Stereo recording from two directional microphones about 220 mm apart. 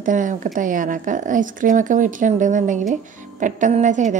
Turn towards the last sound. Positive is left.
turn(degrees=-35)  # may be behind; listen again after turning